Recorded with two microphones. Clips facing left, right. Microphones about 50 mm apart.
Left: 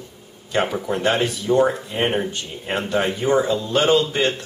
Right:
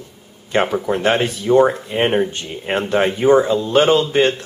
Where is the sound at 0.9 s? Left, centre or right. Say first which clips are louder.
Right 3 dB; right.